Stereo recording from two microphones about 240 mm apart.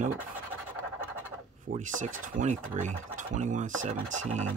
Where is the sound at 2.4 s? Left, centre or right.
Right.